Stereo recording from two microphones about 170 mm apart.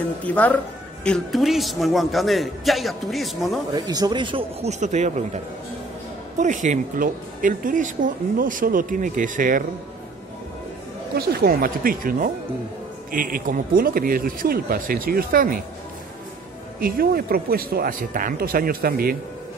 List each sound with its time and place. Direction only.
0.2 s a man's voice: 10° left (ahead or behind)
3.7 s speech: 25° right (ahead or behind); by 5.4 s 45° right (ahead or behind)
6.4 s speech: 45° right (ahead or behind)
11.1 s speech: 65° right (ahead or behind)
16.8 s speech: 60° right (ahead or behind)